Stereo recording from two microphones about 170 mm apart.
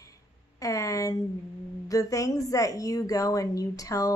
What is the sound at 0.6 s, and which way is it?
A woman's voice, 20° left (ahead or behind).